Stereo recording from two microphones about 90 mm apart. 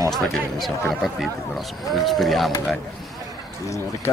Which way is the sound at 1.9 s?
Centre (ahead or behind).